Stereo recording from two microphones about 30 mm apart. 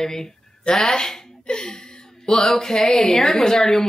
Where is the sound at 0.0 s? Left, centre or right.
Centre.